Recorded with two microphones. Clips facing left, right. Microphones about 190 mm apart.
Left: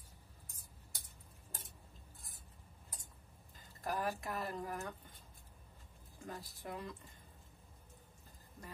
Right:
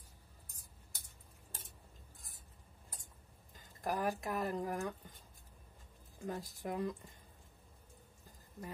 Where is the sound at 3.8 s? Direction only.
15° right (ahead or behind).